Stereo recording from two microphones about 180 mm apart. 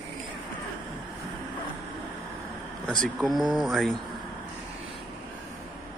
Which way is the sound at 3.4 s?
25° right (ahead or behind).